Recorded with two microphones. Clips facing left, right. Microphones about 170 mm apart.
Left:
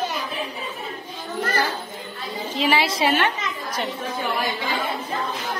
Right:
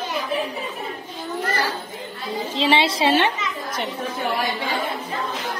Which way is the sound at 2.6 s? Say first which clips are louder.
Right 1 dB; 25° right (ahead or behind).